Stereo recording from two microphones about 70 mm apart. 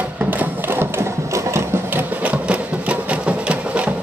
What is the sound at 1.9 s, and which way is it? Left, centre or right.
Sewing machine, right.